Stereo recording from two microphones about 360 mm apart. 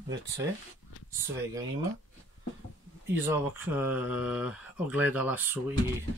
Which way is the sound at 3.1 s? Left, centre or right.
Centre.